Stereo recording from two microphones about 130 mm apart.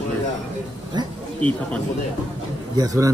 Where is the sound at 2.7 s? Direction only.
25° right (ahead or behind).